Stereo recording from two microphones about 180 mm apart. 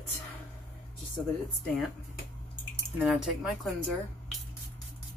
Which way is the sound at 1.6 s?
5° left (ahead or behind).